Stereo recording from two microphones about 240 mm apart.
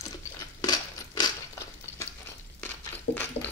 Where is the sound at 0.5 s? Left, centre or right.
Centre.